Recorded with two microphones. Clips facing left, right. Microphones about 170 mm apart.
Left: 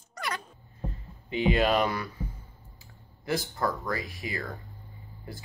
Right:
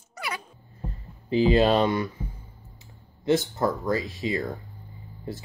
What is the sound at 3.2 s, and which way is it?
Speech, 25° right (ahead or behind).